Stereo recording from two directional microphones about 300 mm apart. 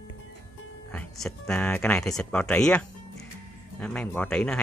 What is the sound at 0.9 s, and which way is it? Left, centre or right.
Speech, centre.